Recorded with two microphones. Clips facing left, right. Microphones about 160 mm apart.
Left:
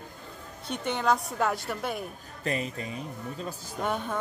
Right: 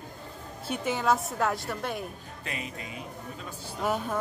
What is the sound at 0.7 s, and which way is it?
A woman's voice, 5° right (ahead or behind).